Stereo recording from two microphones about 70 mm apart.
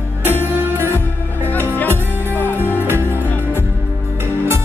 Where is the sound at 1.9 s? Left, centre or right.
Right.